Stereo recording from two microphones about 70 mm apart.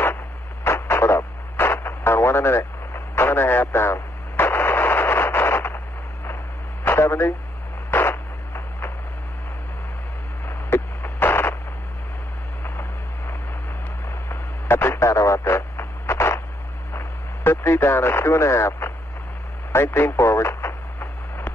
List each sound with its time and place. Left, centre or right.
0.7 s radio: left
6.8 s radio: left
7.9 s a sound: left
10.5 s radio: left
14.0 s radio: left